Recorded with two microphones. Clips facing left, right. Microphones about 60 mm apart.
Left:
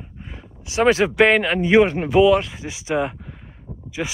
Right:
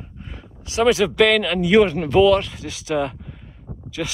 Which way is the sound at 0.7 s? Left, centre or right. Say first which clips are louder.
Even; left.